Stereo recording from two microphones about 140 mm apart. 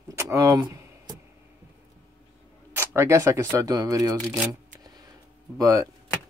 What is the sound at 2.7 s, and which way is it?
Speech, 20° right (ahead or behind).